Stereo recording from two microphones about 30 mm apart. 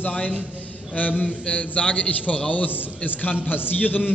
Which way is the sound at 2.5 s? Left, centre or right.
Left.